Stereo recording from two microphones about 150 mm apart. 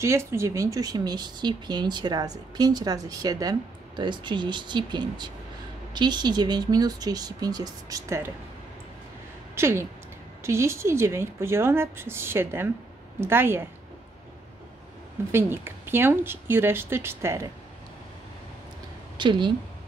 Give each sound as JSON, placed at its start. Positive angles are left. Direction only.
{"t": 0.0, "sound": "speech", "side_deg": -20}
{"t": 9.6, "sound": "speech", "side_deg": -15}
{"t": 15.3, "sound": "speech", "side_deg": -15}
{"t": 19.1, "sound": "a woman's voice", "side_deg": -30}